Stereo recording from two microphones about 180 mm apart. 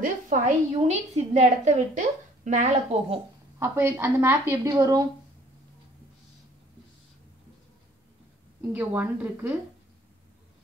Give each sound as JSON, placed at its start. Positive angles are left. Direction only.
{"t": 0.0, "sound": "a woman's voice", "side_deg": -40}
{"t": 3.5, "sound": "a woman's voice", "side_deg": -15}
{"t": 8.7, "sound": "a woman's voice", "side_deg": -10}